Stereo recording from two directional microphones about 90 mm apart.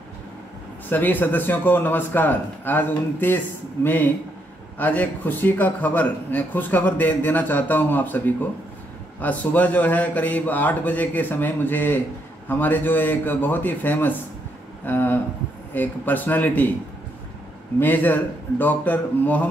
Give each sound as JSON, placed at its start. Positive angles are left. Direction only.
{"t": 0.8, "sound": "a man's voice", "side_deg": 20}
{"t": 17.7, "sound": "a man's voice", "side_deg": 20}